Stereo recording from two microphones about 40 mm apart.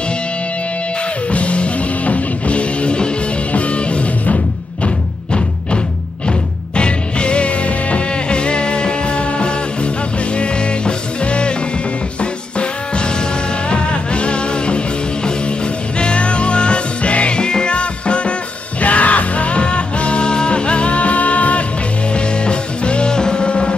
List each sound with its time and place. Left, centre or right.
1.3 s music: left
6.8 s music: left
16.0 s music: left